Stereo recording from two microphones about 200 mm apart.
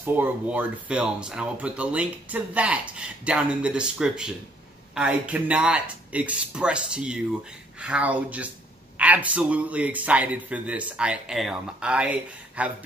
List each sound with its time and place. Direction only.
0.0 s a man's voice: 10° right (ahead or behind)